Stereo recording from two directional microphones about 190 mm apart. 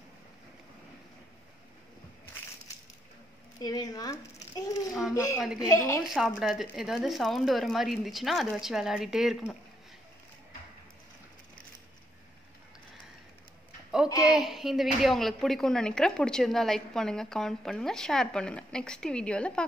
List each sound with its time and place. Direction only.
3.6 s a sound: 20° left (ahead or behind)
5.1 s a woman's voice: 15° left (ahead or behind)
5.4 s a woman's voice: 5° right (ahead or behind)
5.7 s a woman's voice: 15° left (ahead or behind)
6.0 s a woman's voice: centre (ahead or behind)
14.0 s a sound: 20° left (ahead or behind)
14.3 s a woman's voice: centre (ahead or behind)